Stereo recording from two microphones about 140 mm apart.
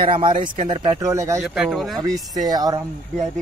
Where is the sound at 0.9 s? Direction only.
20° right (ahead or behind).